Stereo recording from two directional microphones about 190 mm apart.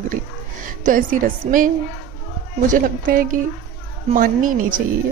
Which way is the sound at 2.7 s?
45° right (ahead or behind).